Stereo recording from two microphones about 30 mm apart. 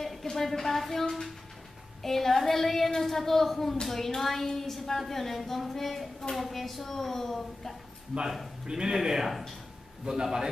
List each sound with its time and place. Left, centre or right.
0.0 s a woman's voice: centre
2.0 s a woman's voice: centre
8.1 s speech: centre
8.6 s speech: right